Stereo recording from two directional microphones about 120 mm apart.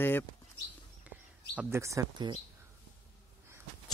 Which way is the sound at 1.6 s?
20° right (ahead or behind).